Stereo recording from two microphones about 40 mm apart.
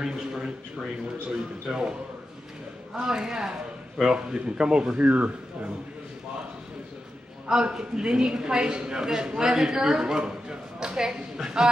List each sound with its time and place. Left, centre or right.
0.0 s a woman's voice: centre
1.7 s a woman's voice: centre
4.9 s speech: right
7.4 s a woman's voice: centre
9.9 s speech: centre